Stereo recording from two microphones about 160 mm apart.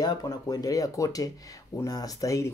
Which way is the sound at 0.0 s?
25° left (ahead or behind).